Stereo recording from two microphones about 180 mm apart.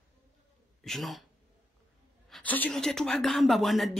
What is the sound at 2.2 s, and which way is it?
Speech, 5° left (ahead or behind).